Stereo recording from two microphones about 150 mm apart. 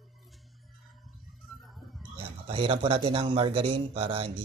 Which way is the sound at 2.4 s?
35° right (ahead or behind).